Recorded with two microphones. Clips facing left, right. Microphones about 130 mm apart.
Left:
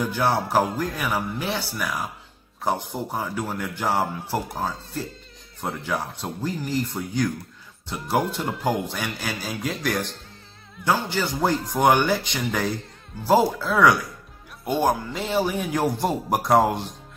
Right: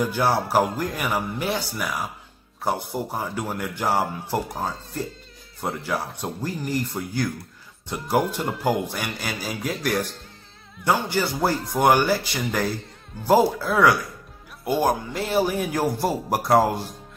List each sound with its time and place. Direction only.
0.0 s speech: 10° right (ahead or behind)
2.9 s speech: 10° right (ahead or behind)
4.5 s speech: centre (ahead or behind)
13.3 s speech: 15° right (ahead or behind)